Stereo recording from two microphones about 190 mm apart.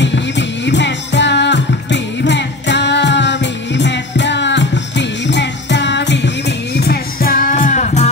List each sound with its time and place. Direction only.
0.0 s music: 70° left (ahead or behind); by 8.1 s 40° left (ahead or behind)